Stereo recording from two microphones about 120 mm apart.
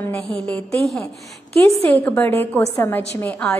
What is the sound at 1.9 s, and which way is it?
A woman's voice, 15° left (ahead or behind).